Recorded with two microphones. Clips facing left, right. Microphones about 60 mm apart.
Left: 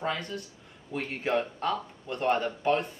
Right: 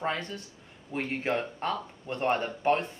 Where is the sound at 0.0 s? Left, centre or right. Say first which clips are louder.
Even; right.